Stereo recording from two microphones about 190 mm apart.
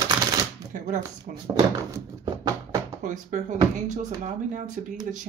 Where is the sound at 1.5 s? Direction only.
20° right (ahead or behind).